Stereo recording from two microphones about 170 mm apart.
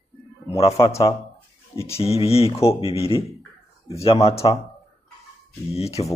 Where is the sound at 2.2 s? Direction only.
35° left (ahead or behind).